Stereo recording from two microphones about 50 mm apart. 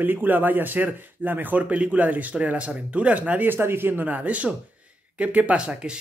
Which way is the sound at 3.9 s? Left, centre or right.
Right.